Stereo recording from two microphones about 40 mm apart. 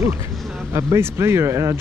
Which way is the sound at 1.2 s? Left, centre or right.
Right.